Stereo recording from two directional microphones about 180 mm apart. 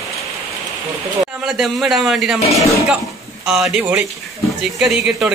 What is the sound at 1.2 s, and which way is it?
A man's voice, centre (ahead or behind).